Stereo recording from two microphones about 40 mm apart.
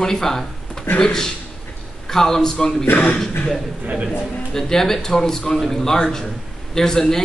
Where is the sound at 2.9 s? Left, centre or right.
Left.